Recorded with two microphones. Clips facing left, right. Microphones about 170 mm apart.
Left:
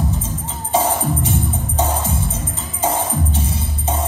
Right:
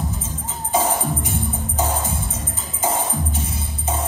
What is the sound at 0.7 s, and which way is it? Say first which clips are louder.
Music: left 3 dB; 30° left (ahead or behind).